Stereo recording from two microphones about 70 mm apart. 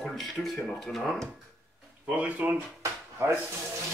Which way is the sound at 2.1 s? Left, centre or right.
Right.